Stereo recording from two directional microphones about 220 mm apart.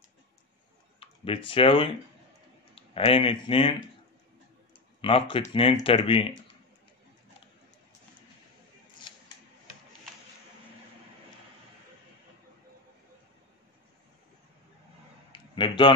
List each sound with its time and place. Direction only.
0.9 s speech: 25° left (ahead or behind)
5.0 s speech: 25° left (ahead or behind)
15.3 s a sound: 20° left (ahead or behind)